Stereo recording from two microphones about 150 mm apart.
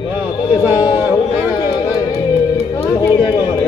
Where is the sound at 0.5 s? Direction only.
25° left (ahead or behind).